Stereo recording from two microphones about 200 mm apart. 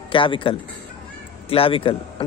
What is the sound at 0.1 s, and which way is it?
A man's voice, 25° left (ahead or behind).